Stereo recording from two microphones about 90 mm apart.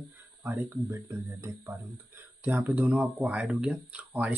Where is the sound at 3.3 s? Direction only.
Centre (ahead or behind).